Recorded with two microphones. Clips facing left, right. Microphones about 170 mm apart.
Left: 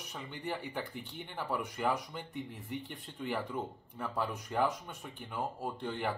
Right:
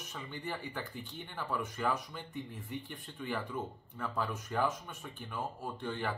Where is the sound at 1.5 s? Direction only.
15° left (ahead or behind).